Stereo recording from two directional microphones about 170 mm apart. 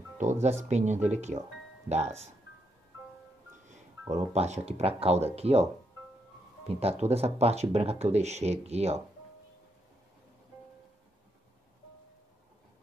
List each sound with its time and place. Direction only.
0.2 s speech: 45° right (ahead or behind)
4.1 s speech: 40° right (ahead or behind)
6.7 s speech: 35° right (ahead or behind)